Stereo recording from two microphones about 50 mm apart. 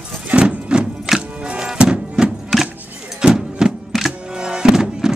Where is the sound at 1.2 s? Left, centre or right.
Right.